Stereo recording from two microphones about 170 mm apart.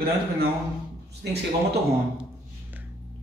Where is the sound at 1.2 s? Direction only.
75° right (ahead or behind).